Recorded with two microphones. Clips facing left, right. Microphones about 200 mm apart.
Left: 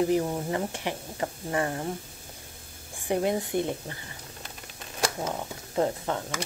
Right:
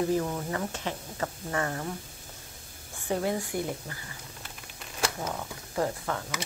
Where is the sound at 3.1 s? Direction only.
20° left (ahead or behind).